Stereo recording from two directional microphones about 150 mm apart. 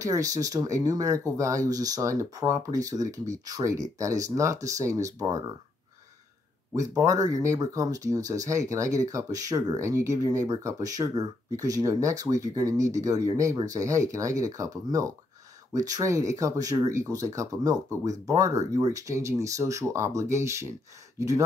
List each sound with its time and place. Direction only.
0.0 s speech: 20° right (ahead or behind)
6.7 s speech: 20° right (ahead or behind)